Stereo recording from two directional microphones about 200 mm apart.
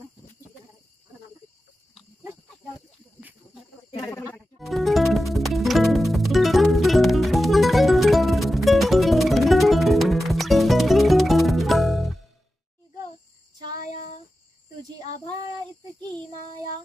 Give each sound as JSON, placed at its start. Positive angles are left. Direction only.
{"t": 3.9, "sound": "snake", "side_deg": 10}
{"t": 4.6, "sound": "music", "side_deg": 0}
{"t": 13.7, "sound": "a sound", "side_deg": 40}